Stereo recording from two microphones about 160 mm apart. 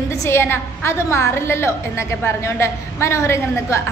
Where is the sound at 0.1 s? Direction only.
15° left (ahead or behind).